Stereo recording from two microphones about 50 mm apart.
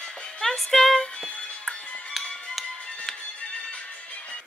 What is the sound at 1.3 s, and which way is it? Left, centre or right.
Music, left.